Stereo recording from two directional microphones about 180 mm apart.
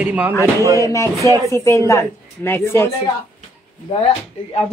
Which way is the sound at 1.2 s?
20° right (ahead or behind).